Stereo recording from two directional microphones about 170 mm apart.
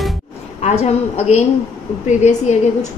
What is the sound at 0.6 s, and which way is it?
A woman's voice, 40° left (ahead or behind).